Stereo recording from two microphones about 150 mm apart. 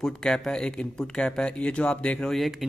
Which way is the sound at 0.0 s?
5° left (ahead or behind).